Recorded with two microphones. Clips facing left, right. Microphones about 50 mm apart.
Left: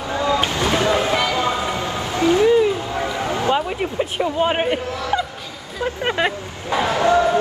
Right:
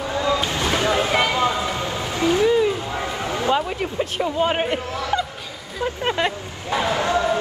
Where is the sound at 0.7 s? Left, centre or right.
Left.